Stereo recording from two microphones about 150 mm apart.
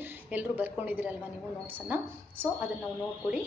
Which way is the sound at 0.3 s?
10° right (ahead or behind).